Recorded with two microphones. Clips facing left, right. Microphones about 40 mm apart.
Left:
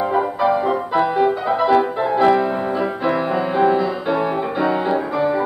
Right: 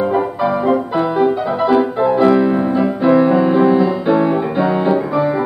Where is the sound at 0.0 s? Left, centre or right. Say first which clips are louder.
Right 2 dB; centre.